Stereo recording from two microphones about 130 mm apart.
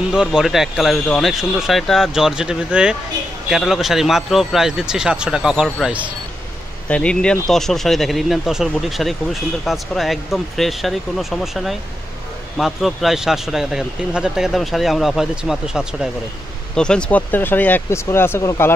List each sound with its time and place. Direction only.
0.1 s speech: 5° right (ahead or behind)
6.9 s speech: 10° left (ahead or behind)
16.7 s speech: 5° left (ahead or behind)